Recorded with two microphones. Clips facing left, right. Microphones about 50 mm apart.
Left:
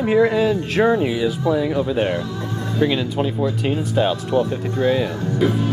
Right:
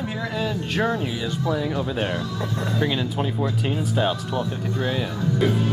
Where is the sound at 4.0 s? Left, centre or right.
Left.